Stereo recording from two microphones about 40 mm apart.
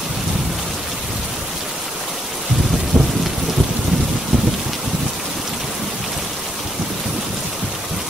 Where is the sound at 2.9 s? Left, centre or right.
Centre.